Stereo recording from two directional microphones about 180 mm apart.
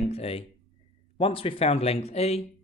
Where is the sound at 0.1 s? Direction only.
35° left (ahead or behind).